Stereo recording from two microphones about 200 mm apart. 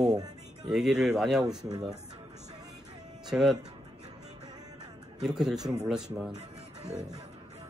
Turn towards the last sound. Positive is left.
turn(degrees=-5)  # may be behind; listen again after turning